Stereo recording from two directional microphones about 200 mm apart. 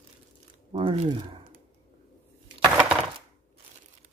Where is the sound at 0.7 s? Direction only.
25° right (ahead or behind).